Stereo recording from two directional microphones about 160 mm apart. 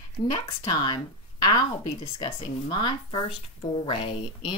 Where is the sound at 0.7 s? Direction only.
25° left (ahead or behind).